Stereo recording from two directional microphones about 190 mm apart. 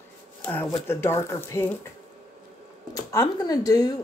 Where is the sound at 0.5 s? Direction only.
10° left (ahead or behind).